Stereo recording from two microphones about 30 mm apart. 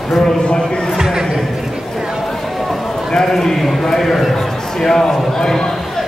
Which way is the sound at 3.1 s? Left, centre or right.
Centre.